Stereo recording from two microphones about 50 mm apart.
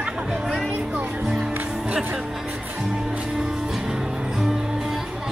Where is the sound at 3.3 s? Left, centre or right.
Centre.